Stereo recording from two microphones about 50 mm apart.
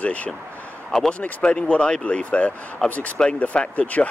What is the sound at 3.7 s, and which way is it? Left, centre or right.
Speech, left.